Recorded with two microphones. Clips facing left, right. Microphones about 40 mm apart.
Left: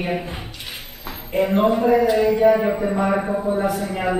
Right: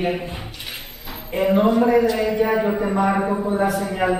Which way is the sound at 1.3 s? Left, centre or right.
Centre.